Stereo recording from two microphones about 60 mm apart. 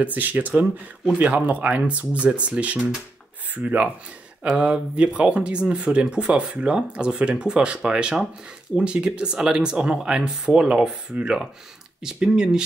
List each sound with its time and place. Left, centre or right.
0.0 s speech: right; by 12.6 s centre